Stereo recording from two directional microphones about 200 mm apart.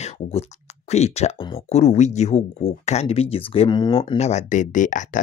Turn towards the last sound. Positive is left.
turn(degrees=40)  # may be behind; listen again after turning